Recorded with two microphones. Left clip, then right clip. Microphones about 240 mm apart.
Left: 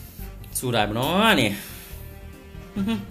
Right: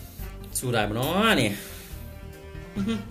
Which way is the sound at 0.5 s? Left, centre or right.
Centre.